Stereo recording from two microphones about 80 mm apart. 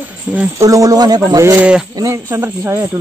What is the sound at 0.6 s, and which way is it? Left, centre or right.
Speech, right.